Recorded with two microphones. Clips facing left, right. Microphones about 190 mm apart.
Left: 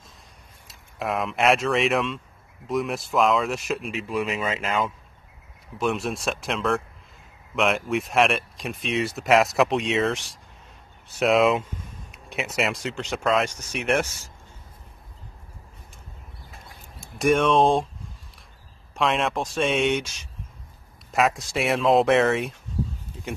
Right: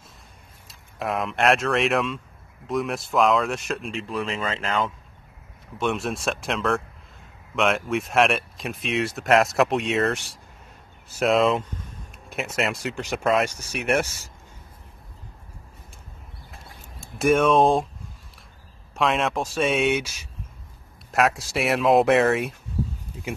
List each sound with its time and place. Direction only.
0.7 s speech: centre (ahead or behind)
17.2 s speech: centre (ahead or behind)
18.9 s speech: centre (ahead or behind)